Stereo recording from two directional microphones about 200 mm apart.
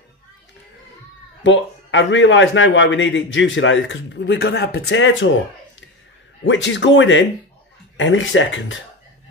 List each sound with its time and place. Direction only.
1.4 s a man's voice: 70° left (ahead or behind)
6.4 s a man's voice: 65° left (ahead or behind)